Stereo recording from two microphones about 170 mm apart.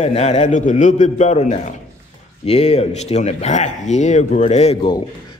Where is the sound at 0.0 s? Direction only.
40° left (ahead or behind).